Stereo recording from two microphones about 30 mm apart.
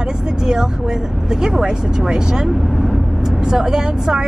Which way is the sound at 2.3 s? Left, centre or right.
Centre.